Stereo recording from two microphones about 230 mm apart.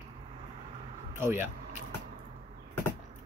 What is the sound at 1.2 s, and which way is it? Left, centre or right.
Speech, centre.